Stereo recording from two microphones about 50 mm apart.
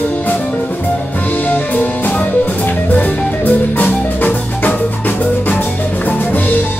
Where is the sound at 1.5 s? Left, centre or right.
Left.